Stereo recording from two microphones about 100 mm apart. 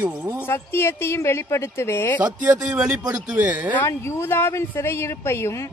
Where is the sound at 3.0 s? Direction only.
35° right (ahead or behind).